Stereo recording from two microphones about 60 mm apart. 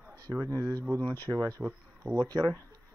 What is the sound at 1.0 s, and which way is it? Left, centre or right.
Speech, left.